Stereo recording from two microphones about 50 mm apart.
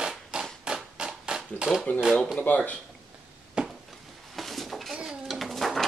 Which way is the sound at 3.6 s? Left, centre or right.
Centre.